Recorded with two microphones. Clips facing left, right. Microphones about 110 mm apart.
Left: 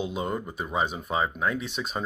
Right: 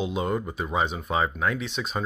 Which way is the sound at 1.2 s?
20° left (ahead or behind).